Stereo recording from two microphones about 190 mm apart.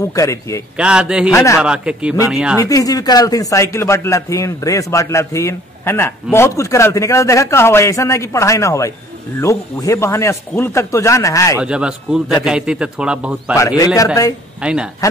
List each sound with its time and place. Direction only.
0.1 s speech: 15° left (ahead or behind)
0.7 s a man's voice: 5° right (ahead or behind)
1.3 s speech: 15° left (ahead or behind)
1.6 s a man's voice: 5° right (ahead or behind)
2.6 s speech: 20° left (ahead or behind)
11.5 s a man's voice: 5° right (ahead or behind)
13.6 s speech: 15° left (ahead or behind)
14.6 s a man's voice: 5° right (ahead or behind)